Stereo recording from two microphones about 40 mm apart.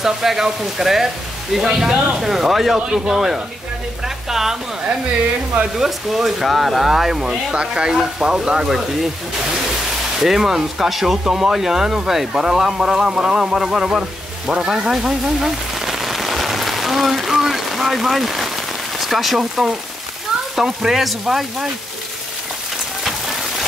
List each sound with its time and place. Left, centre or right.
0.0 s speech: centre
4.3 s speech: centre
5.8 s speech: centre
7.5 s speech: right
10.1 s speech: centre
14.6 s rain on surface: centre
18.9 s speech: centre